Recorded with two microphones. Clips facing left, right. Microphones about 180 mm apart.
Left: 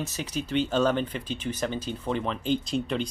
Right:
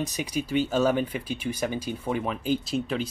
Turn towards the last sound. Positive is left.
turn(degrees=-5)  # may be behind; listen again after turning